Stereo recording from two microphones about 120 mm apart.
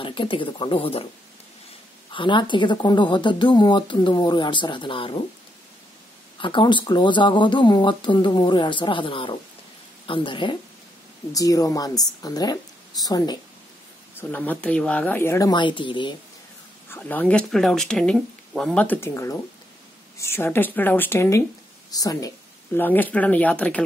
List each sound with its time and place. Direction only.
0.0 s speech: 45° left (ahead or behind)
2.1 s speech: 40° left (ahead or behind)
6.4 s speech: 40° left (ahead or behind)
11.3 s speech: 30° left (ahead or behind)
14.3 s speech: 15° left (ahead or behind)
15.5 s speech: 40° left (ahead or behind)
16.9 s speech: 15° left (ahead or behind)
18.9 s speech: 20° left (ahead or behind)
22.8 s speech: 15° left (ahead or behind)